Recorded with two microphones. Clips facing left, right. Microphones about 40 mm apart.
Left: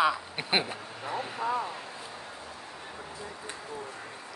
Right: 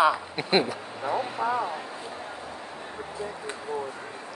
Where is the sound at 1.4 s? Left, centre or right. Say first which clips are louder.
Right 2 dB; right.